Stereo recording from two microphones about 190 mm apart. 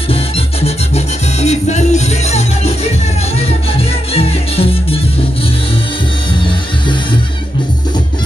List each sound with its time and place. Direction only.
0.1 s music: 30° left (ahead or behind)